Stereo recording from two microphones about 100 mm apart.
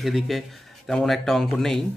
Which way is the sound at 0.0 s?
Centre (ahead or behind).